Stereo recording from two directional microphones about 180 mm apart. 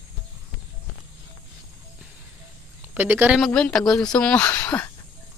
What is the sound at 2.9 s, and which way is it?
Speech, 10° right (ahead or behind).